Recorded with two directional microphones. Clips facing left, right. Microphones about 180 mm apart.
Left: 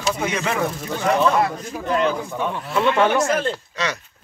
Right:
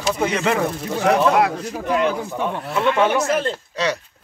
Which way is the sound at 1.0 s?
70° right (ahead or behind).